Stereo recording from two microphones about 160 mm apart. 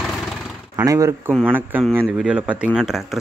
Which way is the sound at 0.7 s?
20° right (ahead or behind).